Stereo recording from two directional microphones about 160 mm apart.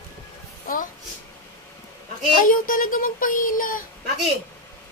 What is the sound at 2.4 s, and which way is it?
Speech, 60° left (ahead or behind).